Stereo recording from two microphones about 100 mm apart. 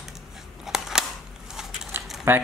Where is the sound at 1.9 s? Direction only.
25° right (ahead or behind).